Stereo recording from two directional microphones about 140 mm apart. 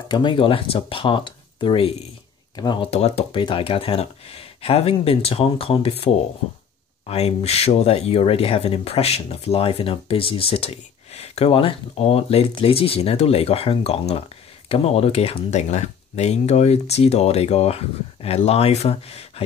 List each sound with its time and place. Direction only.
0.1 s speech: 35° left (ahead or behind)
2.9 s speech: 45° left (ahead or behind)
7.1 s speech: 45° left (ahead or behind)